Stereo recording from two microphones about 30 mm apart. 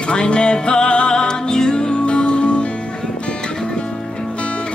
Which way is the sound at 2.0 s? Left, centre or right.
Left.